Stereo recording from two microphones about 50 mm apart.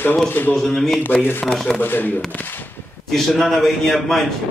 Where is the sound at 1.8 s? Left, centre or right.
Left.